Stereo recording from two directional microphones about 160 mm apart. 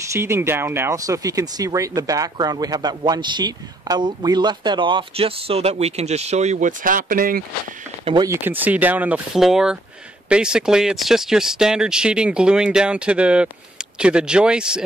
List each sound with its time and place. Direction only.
0.1 s speech: 15° right (ahead or behind); by 7.4 s 60° right (ahead or behind)
8.0 s speech: 30° right (ahead or behind)
8.3 s speech: 10° right (ahead or behind)